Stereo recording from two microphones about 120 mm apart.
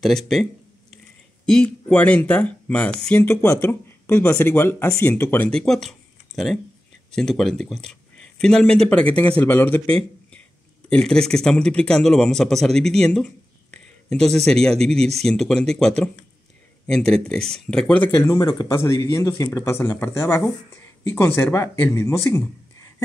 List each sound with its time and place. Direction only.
0.0 s speech: centre (ahead or behind)
1.5 s speech: 10° left (ahead or behind)
3.2 s speech: 25° left (ahead or behind)
5.5 s speech: 5° left (ahead or behind)
10.9 s speech: 5° left (ahead or behind)
18.2 s speech: 25° left (ahead or behind)
18.5 s speech: 35° left (ahead or behind)
18.8 s speech: 25° left (ahead or behind)